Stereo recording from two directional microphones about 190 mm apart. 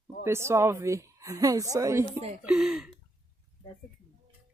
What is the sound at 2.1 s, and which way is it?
Speech, 35° right (ahead or behind).